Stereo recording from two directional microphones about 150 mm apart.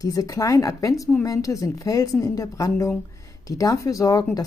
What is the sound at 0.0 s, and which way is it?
A woman's voice, 20° left (ahead or behind).